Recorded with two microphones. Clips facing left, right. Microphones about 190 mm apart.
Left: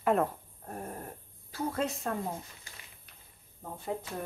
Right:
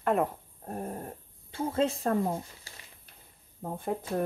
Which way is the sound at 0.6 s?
25° right (ahead or behind).